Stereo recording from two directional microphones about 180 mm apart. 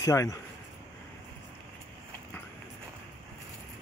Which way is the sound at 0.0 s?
15° left (ahead or behind).